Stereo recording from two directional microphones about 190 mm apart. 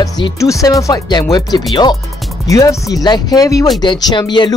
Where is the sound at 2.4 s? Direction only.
15° left (ahead or behind).